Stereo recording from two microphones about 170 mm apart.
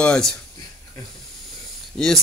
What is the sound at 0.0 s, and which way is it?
Speech, 5° left (ahead or behind).